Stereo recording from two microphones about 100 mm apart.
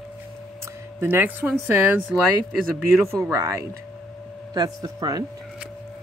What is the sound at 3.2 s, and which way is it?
Speech, 30° right (ahead or behind).